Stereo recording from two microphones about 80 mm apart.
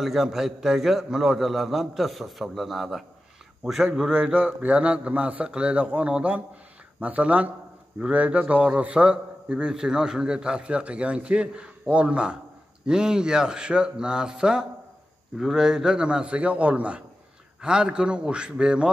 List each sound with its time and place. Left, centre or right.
0.0 s a man's voice: centre
4.1 s a man's voice: centre